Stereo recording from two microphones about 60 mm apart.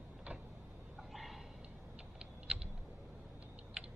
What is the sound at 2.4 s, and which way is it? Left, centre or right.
Typing, centre.